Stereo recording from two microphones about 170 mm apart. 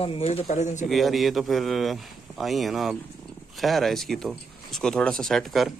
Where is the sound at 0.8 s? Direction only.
Centre (ahead or behind).